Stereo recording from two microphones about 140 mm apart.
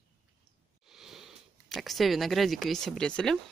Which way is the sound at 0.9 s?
5° right (ahead or behind).